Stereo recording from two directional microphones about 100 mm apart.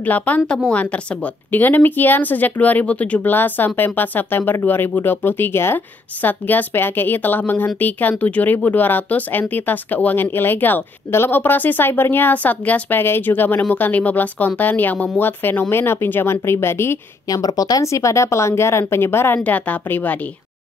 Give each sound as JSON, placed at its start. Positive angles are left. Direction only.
{"t": 0.0, "sound": "a woman's voice", "side_deg": 15}
{"t": 17.3, "sound": "a woman's voice", "side_deg": 40}